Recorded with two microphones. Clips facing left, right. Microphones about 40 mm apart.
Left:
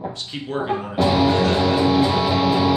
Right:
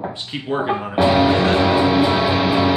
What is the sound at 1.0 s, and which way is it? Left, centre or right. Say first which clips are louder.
Music: right 2 dB; right.